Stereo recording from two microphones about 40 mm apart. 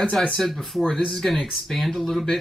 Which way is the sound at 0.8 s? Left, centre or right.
Centre.